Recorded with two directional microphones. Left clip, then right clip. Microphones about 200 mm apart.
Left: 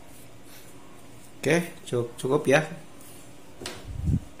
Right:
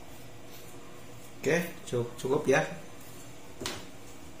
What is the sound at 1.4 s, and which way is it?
Speech, 45° left (ahead or behind).